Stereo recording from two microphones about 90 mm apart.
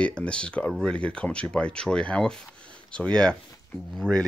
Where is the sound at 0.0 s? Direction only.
10° left (ahead or behind).